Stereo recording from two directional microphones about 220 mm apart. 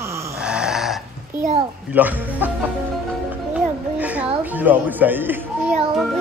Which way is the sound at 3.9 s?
5° right (ahead or behind).